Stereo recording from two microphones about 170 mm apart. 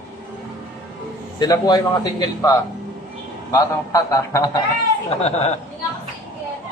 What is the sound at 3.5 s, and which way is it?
Speech, 20° left (ahead or behind).